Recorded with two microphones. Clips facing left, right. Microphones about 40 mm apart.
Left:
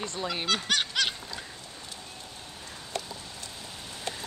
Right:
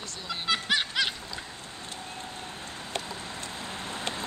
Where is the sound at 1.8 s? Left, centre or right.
Right.